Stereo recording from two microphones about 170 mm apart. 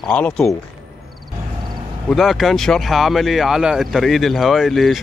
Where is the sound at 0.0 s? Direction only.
5° left (ahead or behind).